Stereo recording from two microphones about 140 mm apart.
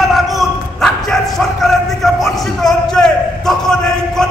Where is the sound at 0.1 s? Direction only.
Centre (ahead or behind).